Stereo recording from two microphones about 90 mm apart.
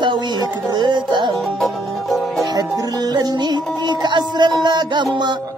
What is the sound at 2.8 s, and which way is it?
Music, 45° right (ahead or behind).